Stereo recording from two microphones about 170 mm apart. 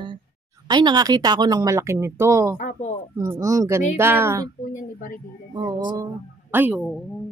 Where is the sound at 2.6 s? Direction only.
45° left (ahead or behind).